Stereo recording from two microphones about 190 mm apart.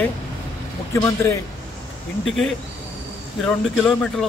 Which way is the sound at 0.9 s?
15° left (ahead or behind).